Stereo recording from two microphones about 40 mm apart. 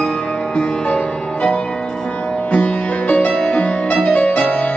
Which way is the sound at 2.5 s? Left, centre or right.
Left.